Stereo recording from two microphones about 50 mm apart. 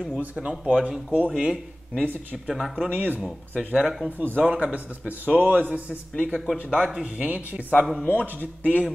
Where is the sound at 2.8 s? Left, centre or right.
Right.